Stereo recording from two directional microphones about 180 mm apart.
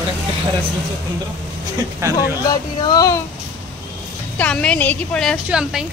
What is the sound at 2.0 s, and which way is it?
Speech, 15° right (ahead or behind).